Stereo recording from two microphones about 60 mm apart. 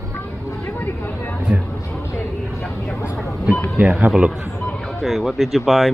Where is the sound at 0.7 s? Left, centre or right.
Left.